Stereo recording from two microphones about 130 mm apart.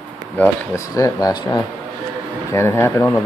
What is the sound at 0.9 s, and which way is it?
Speech, 25° left (ahead or behind).